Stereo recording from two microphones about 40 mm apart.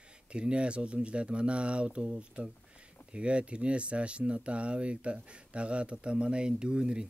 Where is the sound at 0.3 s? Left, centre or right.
Right.